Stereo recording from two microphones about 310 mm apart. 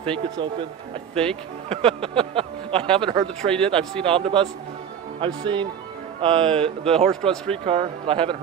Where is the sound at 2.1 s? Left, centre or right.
Centre.